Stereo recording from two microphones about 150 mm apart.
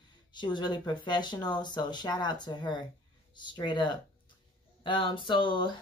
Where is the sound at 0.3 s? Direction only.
30° left (ahead or behind).